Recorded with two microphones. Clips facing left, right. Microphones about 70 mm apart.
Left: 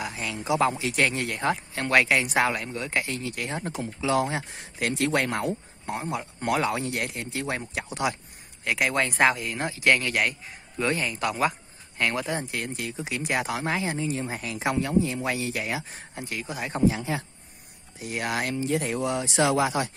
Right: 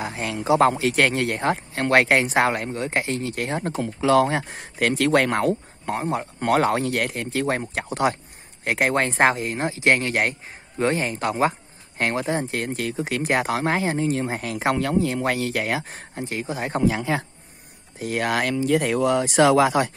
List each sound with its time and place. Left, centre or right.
0.0 s a sound: right
0.4 s speech: right
3.2 s speech: right
3.8 s speech: right
5.9 s speech: right
12.6 s speech: right
16.3 s speech: right
16.8 s a man's voice: right
17.9 s speech: right